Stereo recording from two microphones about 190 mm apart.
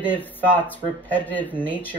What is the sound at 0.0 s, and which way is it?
Speech, 10° left (ahead or behind).